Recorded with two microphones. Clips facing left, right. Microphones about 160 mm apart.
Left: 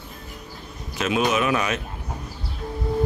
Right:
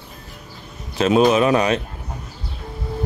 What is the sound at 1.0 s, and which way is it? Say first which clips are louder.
Speech: right 7 dB; 30° right (ahead or behind).